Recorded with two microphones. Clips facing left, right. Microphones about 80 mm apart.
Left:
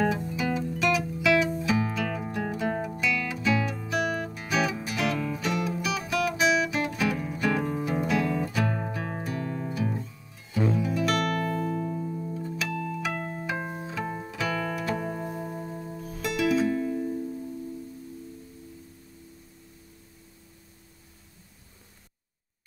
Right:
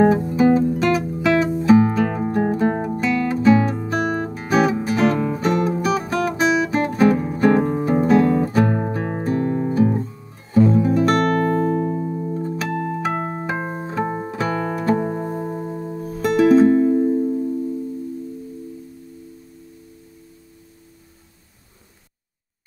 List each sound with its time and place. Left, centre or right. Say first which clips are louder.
0.0 s music: right 12 dB; right